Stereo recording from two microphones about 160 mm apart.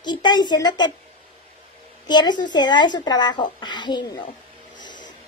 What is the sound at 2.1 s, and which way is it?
A woman's voice, 25° left (ahead or behind).